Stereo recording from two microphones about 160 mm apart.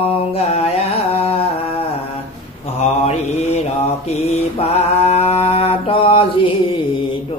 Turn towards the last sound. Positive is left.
turn(degrees=35)  # may be behind; listen again after turning